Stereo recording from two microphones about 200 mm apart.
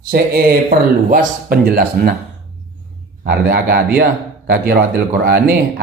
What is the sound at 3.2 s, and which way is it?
Speech, 50° right (ahead or behind).